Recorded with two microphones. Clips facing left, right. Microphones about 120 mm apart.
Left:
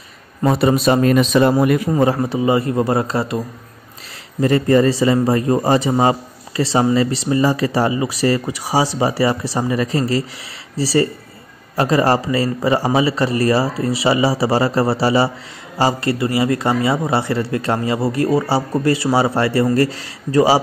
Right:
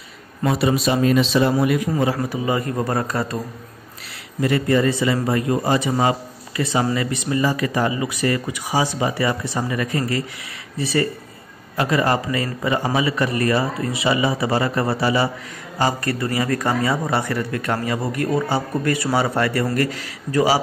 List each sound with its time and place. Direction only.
0.4 s a man's voice: 45° left (ahead or behind)
2.2 s a man's voice: 25° left (ahead or behind)
4.4 s a man's voice: 35° left (ahead or behind)